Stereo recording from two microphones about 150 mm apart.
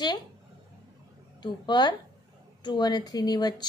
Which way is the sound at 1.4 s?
30° left (ahead or behind).